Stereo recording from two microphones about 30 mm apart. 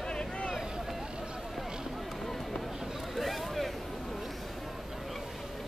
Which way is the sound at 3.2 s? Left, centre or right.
Centre.